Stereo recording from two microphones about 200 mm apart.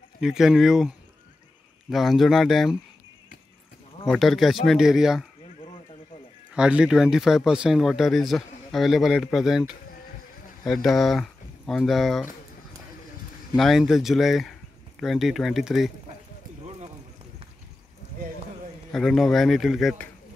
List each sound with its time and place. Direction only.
0.2 s speech: 5° right (ahead or behind)
4.1 s speech: centre (ahead or behind)
6.5 s speech: 5° right (ahead or behind)
13.6 s speech: centre (ahead or behind)
18.9 s speech: centre (ahead or behind)